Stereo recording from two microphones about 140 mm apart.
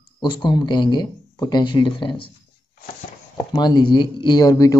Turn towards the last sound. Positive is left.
turn(degrees=25)  # may be behind; listen again after turning